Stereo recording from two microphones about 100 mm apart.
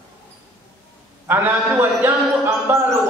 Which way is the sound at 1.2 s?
20° right (ahead or behind).